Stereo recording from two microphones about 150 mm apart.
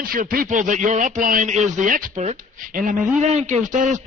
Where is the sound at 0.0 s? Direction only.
70° right (ahead or behind).